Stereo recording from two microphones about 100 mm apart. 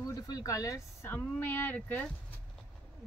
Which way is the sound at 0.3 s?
35° left (ahead or behind).